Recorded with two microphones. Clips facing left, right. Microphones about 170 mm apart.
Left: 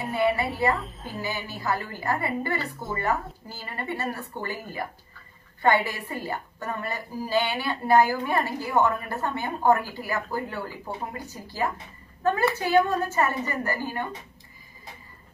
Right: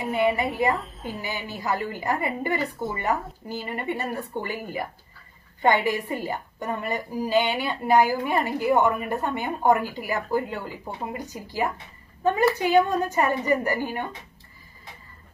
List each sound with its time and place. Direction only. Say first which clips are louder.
0.1 s a woman's voice: right 1 dB; 20° right (ahead or behind)